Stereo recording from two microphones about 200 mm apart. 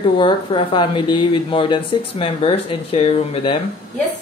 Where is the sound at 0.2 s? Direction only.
25° left (ahead or behind).